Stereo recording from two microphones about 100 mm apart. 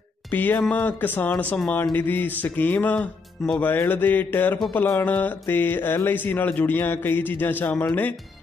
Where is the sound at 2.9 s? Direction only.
5° left (ahead or behind).